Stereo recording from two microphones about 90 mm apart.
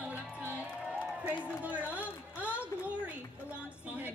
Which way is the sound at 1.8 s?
15° right (ahead or behind).